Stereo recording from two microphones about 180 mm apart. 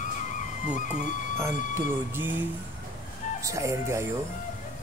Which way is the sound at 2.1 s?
10° right (ahead or behind).